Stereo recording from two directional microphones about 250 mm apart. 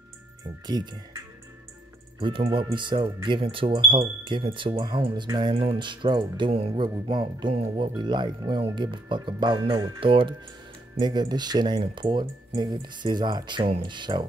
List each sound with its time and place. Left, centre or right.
0.7 s speech: centre